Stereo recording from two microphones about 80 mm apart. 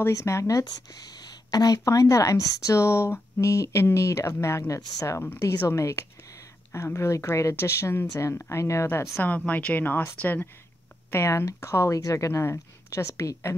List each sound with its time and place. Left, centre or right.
0.0 s speech: left
0.7 s speech: left
9.2 s a woman's voice: centre
11.1 s speech: left